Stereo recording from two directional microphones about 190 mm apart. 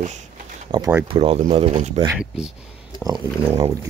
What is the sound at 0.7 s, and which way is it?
Speech, 20° right (ahead or behind).